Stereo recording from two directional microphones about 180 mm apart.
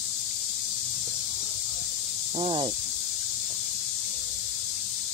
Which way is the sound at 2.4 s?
30° right (ahead or behind).